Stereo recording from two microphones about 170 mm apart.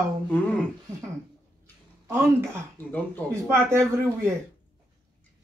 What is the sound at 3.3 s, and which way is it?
Speech, 15° right (ahead or behind).